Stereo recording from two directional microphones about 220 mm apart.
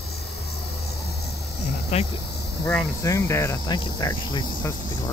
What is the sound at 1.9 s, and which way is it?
Speech, 30° left (ahead or behind).